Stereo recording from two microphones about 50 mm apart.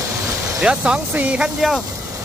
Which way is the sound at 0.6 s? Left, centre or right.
Right.